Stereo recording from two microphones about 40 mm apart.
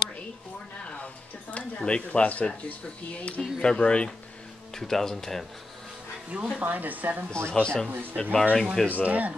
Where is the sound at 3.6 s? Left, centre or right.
Left.